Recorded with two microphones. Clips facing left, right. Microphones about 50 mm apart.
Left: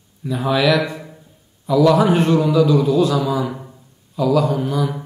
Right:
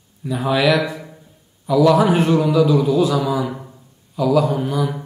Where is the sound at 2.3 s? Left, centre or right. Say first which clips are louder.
Even; centre.